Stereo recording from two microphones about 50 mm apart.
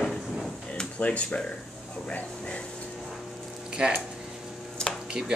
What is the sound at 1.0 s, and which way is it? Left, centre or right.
Speech, left.